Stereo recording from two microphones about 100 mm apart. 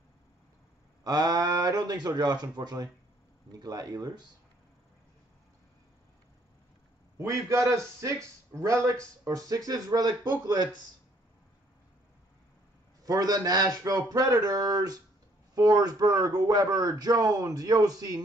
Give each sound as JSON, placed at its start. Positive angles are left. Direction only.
{"t": 1.0, "sound": "speech", "side_deg": -40}
{"t": 7.2, "sound": "speech", "side_deg": -30}
{"t": 13.0, "sound": "speech", "side_deg": -40}